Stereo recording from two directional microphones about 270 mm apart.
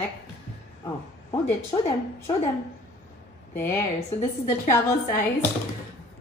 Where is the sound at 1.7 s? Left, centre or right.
Centre.